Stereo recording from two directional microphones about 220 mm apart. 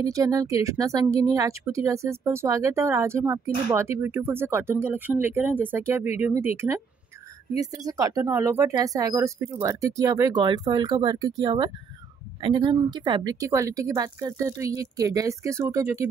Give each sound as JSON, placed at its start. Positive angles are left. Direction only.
{"t": 0.0, "sound": "speech", "side_deg": -15}